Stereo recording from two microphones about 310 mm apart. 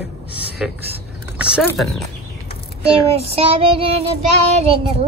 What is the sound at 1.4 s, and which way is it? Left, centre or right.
Speech, centre.